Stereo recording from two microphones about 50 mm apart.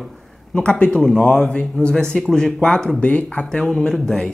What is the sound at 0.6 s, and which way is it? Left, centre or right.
Speech, left.